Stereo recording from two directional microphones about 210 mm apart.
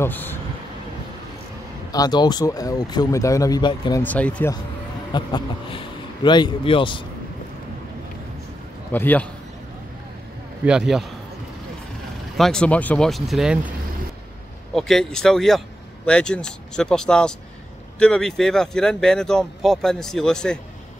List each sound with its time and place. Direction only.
0.0 s speech: 10° left (ahead or behind)
1.9 s speech: 20° left (ahead or behind)
4.0 s speech: 5° left (ahead or behind)
5.1 s a man's voice: 25° left (ahead or behind)
8.9 s speech: 10° left (ahead or behind)
10.6 s speech: 5° right (ahead or behind)
12.4 s speech: 5° left (ahead or behind)
14.7 s speech: centre (ahead or behind)